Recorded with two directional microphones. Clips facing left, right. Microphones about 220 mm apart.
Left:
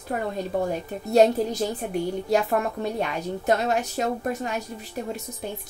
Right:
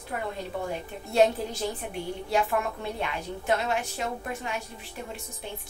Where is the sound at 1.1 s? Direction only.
40° left (ahead or behind).